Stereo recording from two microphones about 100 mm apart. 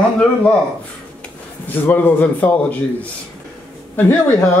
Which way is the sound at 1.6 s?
20° left (ahead or behind).